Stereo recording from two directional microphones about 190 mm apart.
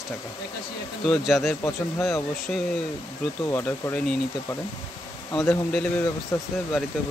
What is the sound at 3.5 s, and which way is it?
Speech, 10° left (ahead or behind).